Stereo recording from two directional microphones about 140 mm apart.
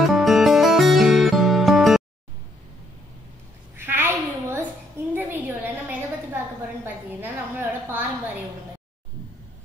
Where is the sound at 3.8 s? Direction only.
15° right (ahead or behind).